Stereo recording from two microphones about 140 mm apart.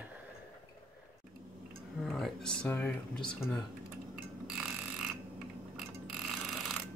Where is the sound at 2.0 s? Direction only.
Centre (ahead or behind).